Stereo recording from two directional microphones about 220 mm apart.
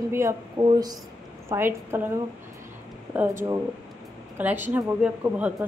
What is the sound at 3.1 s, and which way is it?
A woman's voice, 10° right (ahead or behind).